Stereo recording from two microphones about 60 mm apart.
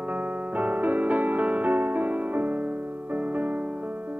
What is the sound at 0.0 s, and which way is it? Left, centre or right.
Music, right.